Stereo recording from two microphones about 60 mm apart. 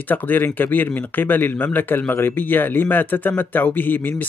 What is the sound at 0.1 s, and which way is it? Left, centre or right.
Speech, left.